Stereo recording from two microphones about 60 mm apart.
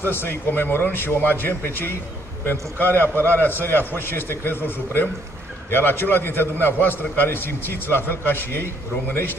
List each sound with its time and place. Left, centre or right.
0.0 s a man's voice: left